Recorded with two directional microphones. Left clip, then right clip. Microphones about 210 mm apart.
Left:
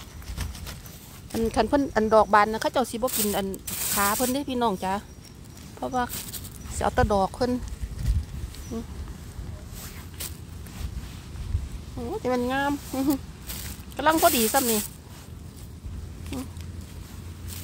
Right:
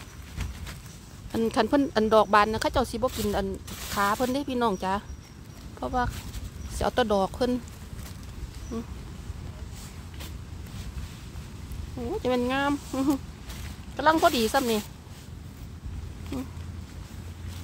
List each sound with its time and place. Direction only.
1.3 s speech: 5° right (ahead or behind)
3.6 s pulleys: 55° left (ahead or behind)
3.9 s speech: 5° left (ahead or behind)
8.7 s speech: 5° right (ahead or behind)
12.1 s speech: 5° right (ahead or behind)